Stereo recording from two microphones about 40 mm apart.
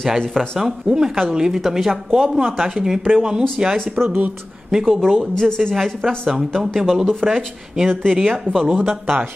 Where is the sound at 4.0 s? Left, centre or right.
Right.